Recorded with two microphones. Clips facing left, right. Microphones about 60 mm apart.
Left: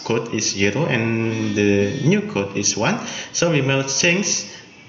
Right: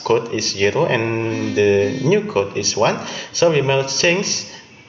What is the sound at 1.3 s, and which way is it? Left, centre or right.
Music, right.